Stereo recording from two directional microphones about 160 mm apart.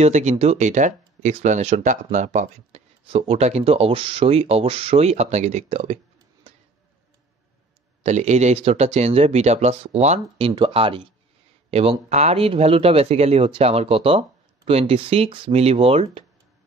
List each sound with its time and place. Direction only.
0.0 s speech: 45° right (ahead or behind)
3.1 s speech: 40° right (ahead or behind)
6.5 s a sound: 35° right (ahead or behind)
8.0 s speech: 45° right (ahead or behind)